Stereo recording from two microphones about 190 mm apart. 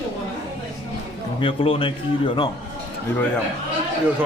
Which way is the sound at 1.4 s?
30° left (ahead or behind).